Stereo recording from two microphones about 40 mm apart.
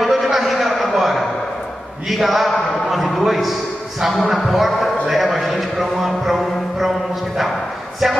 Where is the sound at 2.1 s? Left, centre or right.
Centre.